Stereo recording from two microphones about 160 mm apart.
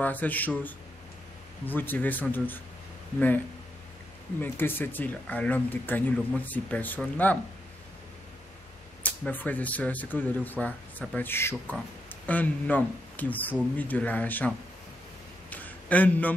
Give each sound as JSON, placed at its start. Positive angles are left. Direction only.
{"t": 0.0, "sound": "speech", "side_deg": 10}
{"t": 4.4, "sound": "speech", "side_deg": 15}
{"t": 9.0, "sound": "speech", "side_deg": 10}
{"t": 15.5, "sound": "a sound", "side_deg": 10}